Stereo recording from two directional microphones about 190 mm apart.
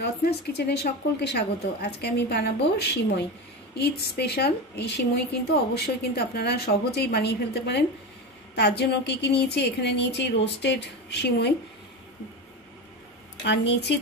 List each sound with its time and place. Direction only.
0.0 s a woman's voice: 60° left (ahead or behind)
13.4 s a woman's voice: 65° left (ahead or behind)